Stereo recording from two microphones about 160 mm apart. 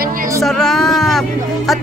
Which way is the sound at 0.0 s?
60° right (ahead or behind).